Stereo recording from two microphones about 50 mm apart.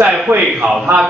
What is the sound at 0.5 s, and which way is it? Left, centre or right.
Speech, right.